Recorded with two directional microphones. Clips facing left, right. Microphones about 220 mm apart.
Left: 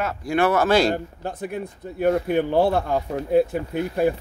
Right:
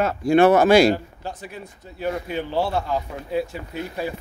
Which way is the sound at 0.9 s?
55° left (ahead or behind).